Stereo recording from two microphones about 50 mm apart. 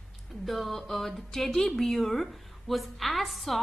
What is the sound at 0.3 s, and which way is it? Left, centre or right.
A woman's voice, centre.